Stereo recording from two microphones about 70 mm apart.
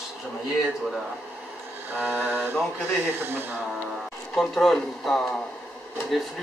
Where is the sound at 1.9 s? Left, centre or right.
Right.